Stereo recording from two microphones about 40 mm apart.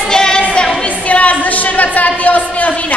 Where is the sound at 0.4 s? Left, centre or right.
Left.